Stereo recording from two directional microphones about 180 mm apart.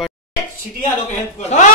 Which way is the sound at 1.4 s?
40° left (ahead or behind).